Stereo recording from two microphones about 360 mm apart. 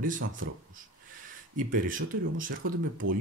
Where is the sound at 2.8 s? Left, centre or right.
Right.